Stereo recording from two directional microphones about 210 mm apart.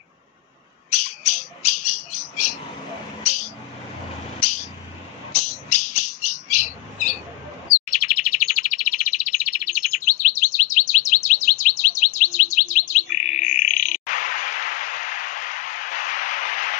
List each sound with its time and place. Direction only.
0.8 s squawk: 35° left (ahead or behind)
3.3 s a sound: 35° left (ahead or behind)
5.5 s bird: 35° left (ahead or behind)